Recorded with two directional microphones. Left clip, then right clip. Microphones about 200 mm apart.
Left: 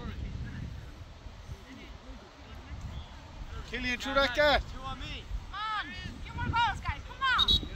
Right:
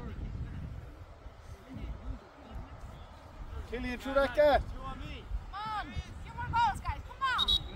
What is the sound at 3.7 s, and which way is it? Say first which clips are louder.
Speech: left 3 dB; 45° right (ahead or behind).